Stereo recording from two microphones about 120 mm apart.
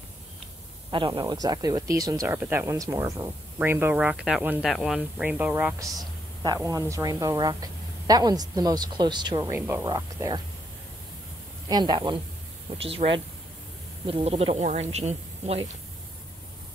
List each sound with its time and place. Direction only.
0.9 s speech: 45° right (ahead or behind)
1.2 s speech: 30° right (ahead or behind)
2.2 s speech: 15° right (ahead or behind)
4.6 s speech: 5° right (ahead or behind)
5.2 s speech: 15° right (ahead or behind)
5.8 s speech: 35° right (ahead or behind)
9.5 s speech: 20° right (ahead or behind)
9.8 s speech: 35° right (ahead or behind)
11.7 s speech: 35° right (ahead or behind)
12.7 s a woman's voice: 50° right (ahead or behind)